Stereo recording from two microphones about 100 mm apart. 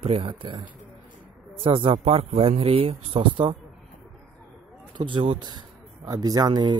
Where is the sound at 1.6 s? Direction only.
65° right (ahead or behind).